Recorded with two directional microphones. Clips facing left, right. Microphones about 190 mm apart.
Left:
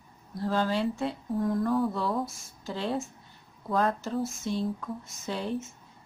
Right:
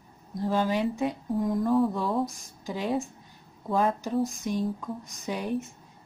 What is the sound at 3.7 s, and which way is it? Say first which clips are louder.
Mantra: right 1 dB; 5° right (ahead or behind).